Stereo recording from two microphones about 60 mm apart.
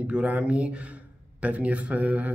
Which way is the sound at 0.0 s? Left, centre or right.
Right.